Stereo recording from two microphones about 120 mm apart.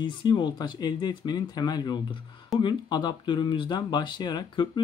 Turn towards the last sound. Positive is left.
turn(degrees=40)  # may be behind; listen again after turning